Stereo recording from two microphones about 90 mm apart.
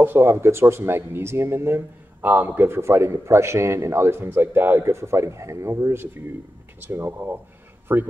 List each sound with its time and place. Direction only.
0.0 s speech: 25° right (ahead or behind)